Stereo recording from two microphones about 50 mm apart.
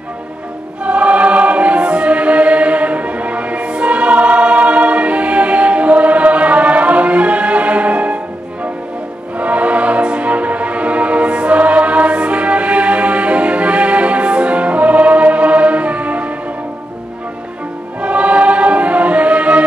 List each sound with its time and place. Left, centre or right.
0.8 s choir: right
9.4 s music: right
18.0 s music: right